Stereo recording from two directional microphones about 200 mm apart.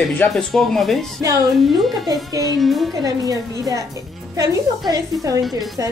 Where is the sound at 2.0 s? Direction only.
20° right (ahead or behind).